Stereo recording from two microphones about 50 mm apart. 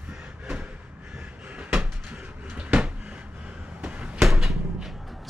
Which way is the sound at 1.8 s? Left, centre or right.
Right.